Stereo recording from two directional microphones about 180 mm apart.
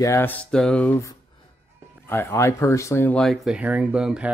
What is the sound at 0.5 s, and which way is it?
Speech, 5° left (ahead or behind).